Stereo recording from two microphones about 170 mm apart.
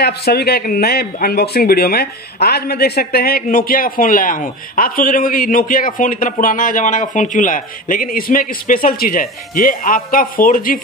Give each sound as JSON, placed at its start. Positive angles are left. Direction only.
{"t": 0.0, "sound": "a man's voice", "side_deg": 70}